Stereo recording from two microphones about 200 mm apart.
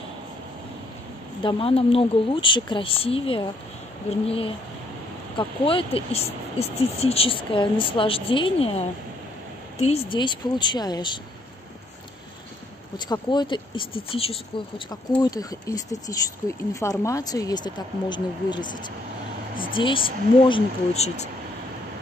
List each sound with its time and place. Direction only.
1.4 s speech: 25° left (ahead or behind)
12.9 s speech: 20° left (ahead or behind)
15.2 s speech: 20° left (ahead or behind)